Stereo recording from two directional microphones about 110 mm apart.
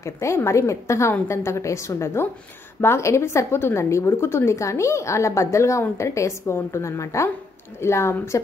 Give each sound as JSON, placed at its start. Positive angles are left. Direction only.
{"t": 0.0, "sound": "a woman's voice", "side_deg": 25}